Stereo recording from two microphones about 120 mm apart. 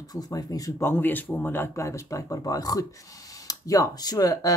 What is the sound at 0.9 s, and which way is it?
Speech, 15° left (ahead or behind).